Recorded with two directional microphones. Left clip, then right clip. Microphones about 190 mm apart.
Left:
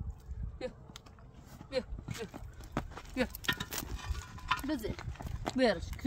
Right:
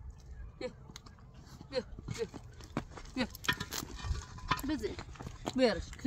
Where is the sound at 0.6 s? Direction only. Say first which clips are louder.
Even; 45° left (ahead or behind).